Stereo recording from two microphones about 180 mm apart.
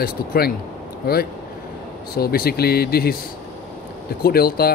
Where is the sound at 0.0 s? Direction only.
60° left (ahead or behind).